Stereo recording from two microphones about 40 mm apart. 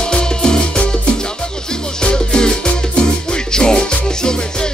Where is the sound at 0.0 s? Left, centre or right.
Left.